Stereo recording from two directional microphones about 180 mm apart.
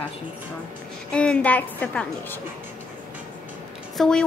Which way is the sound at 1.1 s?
5° left (ahead or behind).